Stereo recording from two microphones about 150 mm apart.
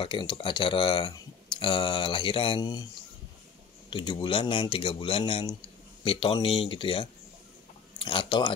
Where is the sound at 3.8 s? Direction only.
30° left (ahead or behind).